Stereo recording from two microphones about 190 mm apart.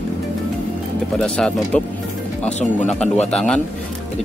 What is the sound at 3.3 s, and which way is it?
Speech, 5° left (ahead or behind).